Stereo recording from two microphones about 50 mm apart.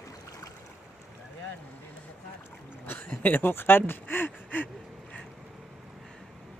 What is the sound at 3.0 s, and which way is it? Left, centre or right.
Speech, left.